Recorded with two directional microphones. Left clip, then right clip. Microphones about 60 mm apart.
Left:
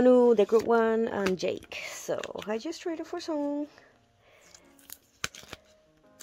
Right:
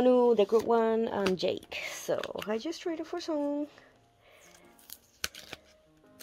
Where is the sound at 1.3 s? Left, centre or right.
Left.